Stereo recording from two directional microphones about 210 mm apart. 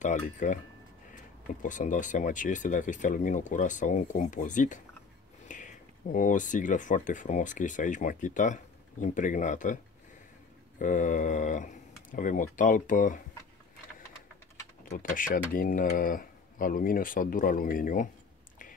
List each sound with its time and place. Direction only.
0.0 s speech: 35° left (ahead or behind)
5.5 s a sound: 35° left (ahead or behind)
6.1 s speech: 40° left (ahead or behind)
10.8 s speech: 35° left (ahead or behind)
14.9 s speech: 40° left (ahead or behind)